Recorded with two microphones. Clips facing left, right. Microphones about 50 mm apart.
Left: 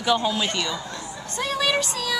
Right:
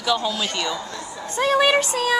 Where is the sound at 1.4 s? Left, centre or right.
Right.